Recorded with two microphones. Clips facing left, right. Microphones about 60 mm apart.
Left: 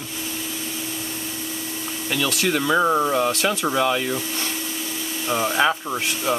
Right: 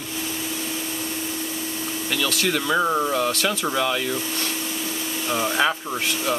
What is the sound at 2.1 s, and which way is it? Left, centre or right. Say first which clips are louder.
Speech: left 2 dB; centre.